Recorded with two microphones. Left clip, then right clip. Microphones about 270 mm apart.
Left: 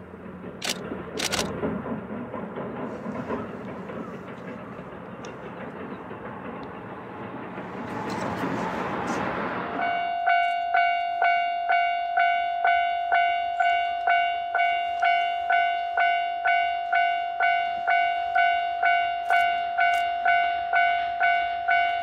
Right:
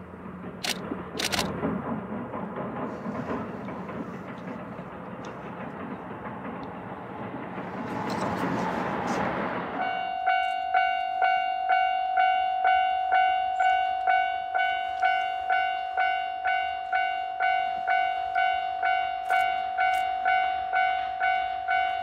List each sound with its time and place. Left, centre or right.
8.0 s train: right
10.0 s train: left
15.8 s music: left
21.2 s train: left